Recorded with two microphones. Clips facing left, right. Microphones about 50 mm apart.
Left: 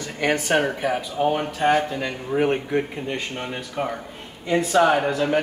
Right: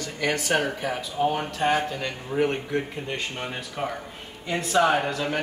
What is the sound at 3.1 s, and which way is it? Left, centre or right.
Speech, centre.